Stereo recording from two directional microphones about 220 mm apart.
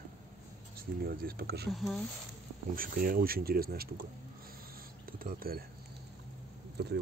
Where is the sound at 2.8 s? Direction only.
40° right (ahead or behind).